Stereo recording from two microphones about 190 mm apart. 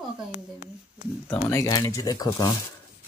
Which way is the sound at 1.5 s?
15° left (ahead or behind).